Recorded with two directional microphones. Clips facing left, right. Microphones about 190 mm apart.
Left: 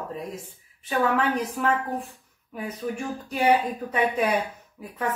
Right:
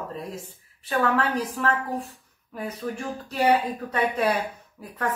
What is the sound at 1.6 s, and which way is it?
Speech, 5° left (ahead or behind).